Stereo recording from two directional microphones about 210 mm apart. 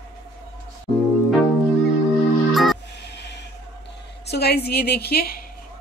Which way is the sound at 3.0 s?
55° left (ahead or behind).